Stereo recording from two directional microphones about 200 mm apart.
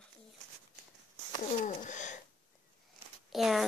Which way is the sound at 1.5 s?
40° left (ahead or behind).